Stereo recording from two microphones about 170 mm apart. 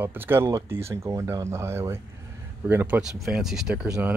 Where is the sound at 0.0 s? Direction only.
10° right (ahead or behind).